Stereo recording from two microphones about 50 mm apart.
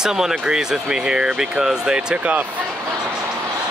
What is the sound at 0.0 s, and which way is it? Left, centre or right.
Speech, centre.